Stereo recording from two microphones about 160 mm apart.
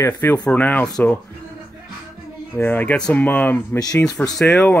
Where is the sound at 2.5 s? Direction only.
10° left (ahead or behind).